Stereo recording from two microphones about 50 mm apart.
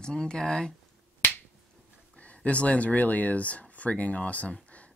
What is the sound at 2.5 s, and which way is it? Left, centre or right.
Speech, left.